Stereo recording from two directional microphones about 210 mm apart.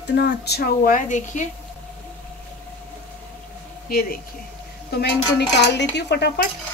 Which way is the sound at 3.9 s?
45° left (ahead or behind).